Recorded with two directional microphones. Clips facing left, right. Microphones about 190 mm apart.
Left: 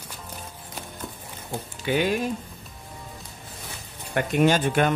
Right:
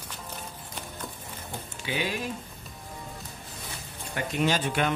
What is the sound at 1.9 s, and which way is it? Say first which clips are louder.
Speech: left 8 dB; 55° left (ahead or behind).